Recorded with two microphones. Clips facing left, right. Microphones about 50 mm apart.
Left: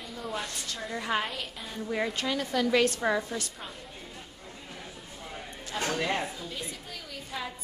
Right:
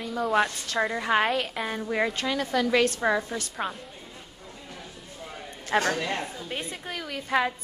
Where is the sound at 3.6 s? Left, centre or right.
Right.